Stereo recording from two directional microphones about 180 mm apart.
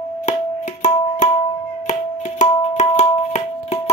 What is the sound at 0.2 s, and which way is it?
Music, 40° left (ahead or behind).